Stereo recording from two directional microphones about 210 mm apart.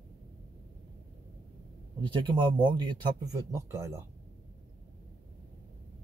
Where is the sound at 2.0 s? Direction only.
25° right (ahead or behind).